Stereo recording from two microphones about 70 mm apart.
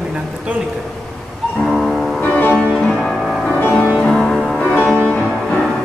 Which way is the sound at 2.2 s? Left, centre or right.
Left.